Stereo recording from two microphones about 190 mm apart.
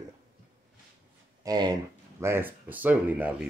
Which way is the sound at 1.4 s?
20° right (ahead or behind).